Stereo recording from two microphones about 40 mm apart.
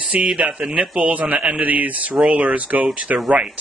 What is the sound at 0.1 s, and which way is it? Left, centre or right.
Speech, right.